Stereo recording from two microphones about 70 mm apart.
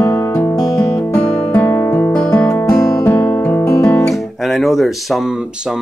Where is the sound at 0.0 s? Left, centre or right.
Left.